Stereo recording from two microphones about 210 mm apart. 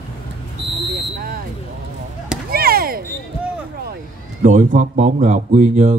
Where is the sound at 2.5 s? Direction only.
45° right (ahead or behind).